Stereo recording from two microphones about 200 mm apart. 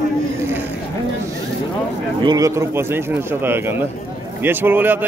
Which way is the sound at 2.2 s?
15° right (ahead or behind).